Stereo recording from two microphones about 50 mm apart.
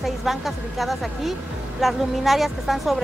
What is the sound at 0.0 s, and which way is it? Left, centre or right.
Speech, centre.